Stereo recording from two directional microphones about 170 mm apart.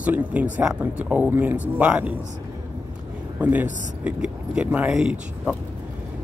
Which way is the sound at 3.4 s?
10° right (ahead or behind).